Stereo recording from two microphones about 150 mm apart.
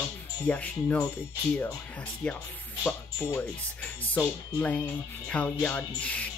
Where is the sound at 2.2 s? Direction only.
10° left (ahead or behind).